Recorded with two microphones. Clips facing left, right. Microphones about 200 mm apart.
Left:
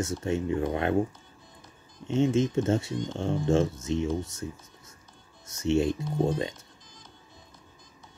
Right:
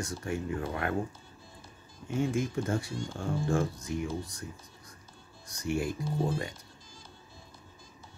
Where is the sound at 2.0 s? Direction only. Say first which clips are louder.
Left 6 dB; 25° left (ahead or behind).